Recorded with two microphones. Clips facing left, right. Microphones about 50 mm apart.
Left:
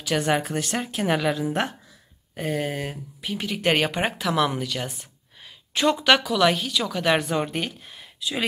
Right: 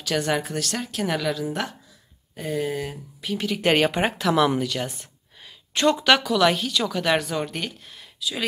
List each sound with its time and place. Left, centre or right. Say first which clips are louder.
0.0 s a woman's voice: left 1 dB; centre; by 2.9 s left
3.2 s speech: right 3 dB; centre